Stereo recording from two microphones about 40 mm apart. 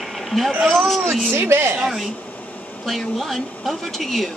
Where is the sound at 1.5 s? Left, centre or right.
Right.